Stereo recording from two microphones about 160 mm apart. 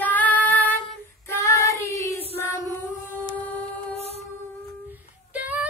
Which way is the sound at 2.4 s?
15° left (ahead or behind).